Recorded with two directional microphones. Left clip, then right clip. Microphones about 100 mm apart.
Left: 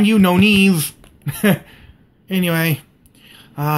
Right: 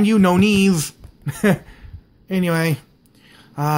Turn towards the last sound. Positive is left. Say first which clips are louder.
# even
turn(degrees=-25)  # may be behind; listen again after turning